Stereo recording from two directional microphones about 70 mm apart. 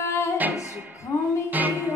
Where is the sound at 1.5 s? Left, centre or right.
Right.